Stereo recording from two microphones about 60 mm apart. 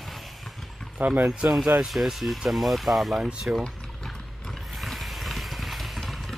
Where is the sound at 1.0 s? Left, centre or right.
Right.